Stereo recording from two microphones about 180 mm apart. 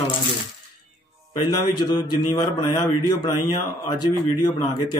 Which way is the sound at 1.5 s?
20° left (ahead or behind).